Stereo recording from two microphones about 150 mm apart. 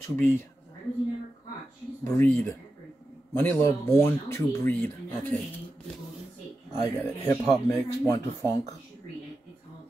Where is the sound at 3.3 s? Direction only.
15° left (ahead or behind).